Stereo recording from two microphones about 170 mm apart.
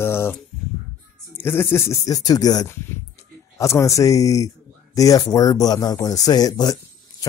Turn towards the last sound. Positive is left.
turn(degrees=20)  # may be behind; listen again after turning